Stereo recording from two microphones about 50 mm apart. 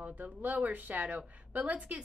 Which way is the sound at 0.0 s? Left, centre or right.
Right.